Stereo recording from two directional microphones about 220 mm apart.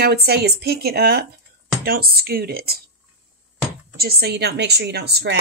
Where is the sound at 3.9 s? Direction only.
45° right (ahead or behind).